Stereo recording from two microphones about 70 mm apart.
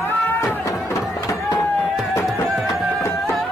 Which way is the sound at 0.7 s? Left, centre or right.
Left.